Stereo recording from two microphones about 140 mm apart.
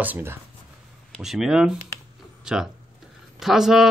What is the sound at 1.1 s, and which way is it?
Speech, centre (ahead or behind).